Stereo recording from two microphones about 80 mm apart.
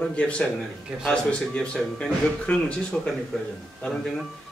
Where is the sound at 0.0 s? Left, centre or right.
Centre.